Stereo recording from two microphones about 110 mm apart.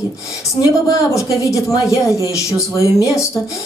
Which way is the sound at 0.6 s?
30° left (ahead or behind).